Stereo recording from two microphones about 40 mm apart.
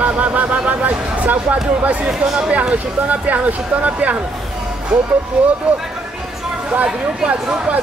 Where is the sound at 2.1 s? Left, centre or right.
Centre.